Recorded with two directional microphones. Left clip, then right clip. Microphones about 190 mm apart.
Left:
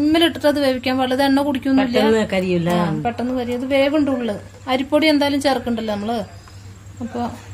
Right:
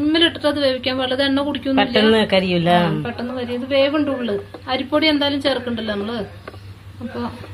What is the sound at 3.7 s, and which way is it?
A woman's voice, 80° left.